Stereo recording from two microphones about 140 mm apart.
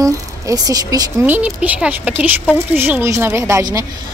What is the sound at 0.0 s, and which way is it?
Speech, 25° right (ahead or behind).